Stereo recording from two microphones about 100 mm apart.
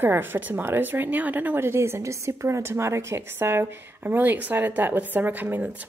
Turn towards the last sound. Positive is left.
turn(degrees=-15)  # may be behind; listen again after turning